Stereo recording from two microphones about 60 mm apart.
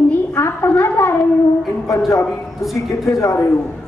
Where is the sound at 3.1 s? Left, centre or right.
Left.